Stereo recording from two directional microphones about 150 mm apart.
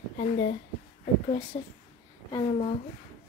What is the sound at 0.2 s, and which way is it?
Speech, 60° left (ahead or behind).